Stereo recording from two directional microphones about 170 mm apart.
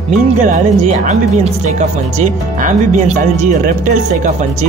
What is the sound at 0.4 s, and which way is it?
Speech, 45° right (ahead or behind).